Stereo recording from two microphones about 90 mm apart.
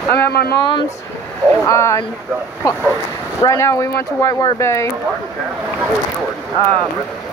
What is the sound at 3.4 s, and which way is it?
Speech, 35° left (ahead or behind).